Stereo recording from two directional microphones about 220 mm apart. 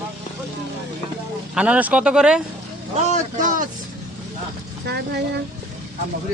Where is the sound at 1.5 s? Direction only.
5° right (ahead or behind).